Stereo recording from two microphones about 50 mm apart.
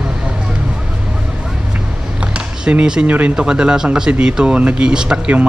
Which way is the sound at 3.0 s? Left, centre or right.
Right.